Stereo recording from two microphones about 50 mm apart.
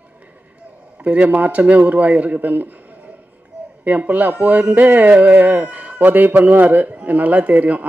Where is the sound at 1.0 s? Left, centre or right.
Right.